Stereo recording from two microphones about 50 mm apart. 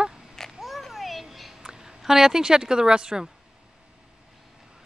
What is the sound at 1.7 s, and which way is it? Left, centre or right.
Speech, centre.